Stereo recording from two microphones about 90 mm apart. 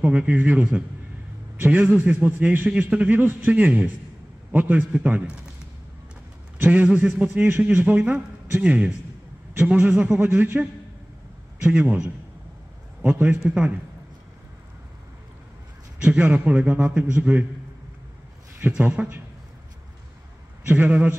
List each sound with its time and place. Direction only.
0.0 s a man's voice: 15° right (ahead or behind)
6.6 s a man's voice: 15° right (ahead or behind)
11.6 s a man's voice: 15° right (ahead or behind)
16.0 s a man's voice: 15° right (ahead or behind)
18.6 s a man's voice: 15° right (ahead or behind)
20.6 s a man's voice: 15° right (ahead or behind)